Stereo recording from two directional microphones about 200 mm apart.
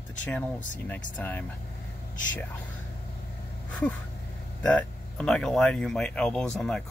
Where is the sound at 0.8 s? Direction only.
5° left (ahead or behind).